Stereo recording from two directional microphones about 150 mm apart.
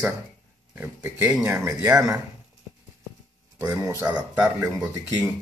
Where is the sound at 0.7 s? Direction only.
10° right (ahead or behind).